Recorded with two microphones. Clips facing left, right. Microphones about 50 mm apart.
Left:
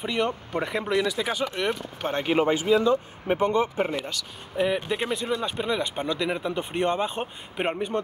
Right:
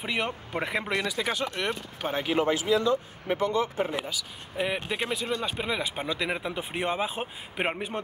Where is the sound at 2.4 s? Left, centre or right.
Left.